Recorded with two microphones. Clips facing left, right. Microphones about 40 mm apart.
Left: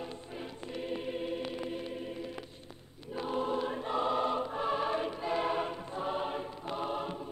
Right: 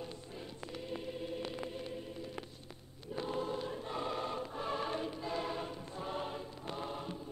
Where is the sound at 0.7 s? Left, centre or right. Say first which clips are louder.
Left 6 dB; left.